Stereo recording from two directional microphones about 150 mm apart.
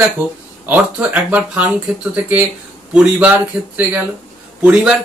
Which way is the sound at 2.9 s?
10° right (ahead or behind).